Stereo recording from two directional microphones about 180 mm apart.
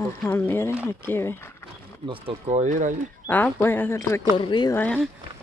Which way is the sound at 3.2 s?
10° left (ahead or behind).